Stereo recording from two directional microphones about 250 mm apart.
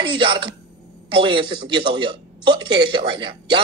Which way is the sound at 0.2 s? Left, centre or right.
Centre.